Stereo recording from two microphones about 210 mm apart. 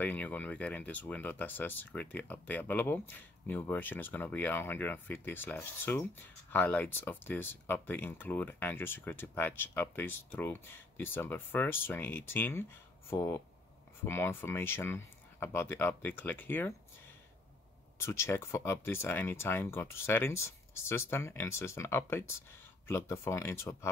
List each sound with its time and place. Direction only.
0.0 s speech: 10° left (ahead or behind)
17.9 s speech: 10° left (ahead or behind)